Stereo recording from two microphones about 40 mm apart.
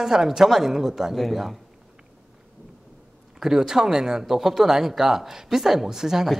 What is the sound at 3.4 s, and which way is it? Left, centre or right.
Speech, centre.